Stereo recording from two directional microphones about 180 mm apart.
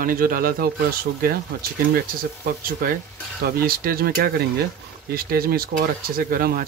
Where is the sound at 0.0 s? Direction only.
50° right (ahead or behind).